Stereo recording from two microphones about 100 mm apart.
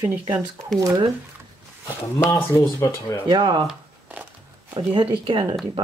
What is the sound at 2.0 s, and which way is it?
Speech, 20° left (ahead or behind).